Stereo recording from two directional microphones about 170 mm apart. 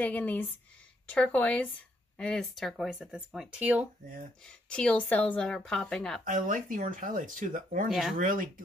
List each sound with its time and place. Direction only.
0.0 s speech: 10° left (ahead or behind); by 3.8 s 5° right (ahead or behind)
4.6 s speech: 5° left (ahead or behind)
6.2 s speech: 55° right (ahead or behind)
7.9 s speech: centre (ahead or behind)
8.2 s speech: 50° right (ahead or behind)